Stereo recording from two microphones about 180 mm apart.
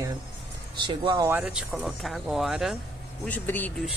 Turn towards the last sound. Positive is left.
turn(degrees=10)  # may be behind; listen again after turning